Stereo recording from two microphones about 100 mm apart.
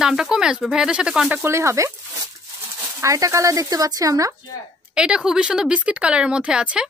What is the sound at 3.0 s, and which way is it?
Speech, 30° right (ahead or behind).